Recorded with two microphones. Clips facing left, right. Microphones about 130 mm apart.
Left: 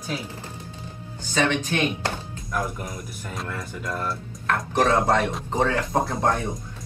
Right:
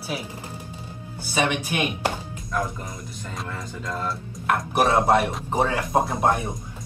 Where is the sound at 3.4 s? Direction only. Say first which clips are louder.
Left 1 dB; 20° right (ahead or behind).